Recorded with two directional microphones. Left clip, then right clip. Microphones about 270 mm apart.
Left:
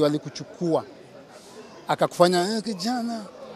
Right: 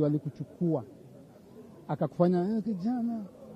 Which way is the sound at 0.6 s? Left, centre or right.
Left.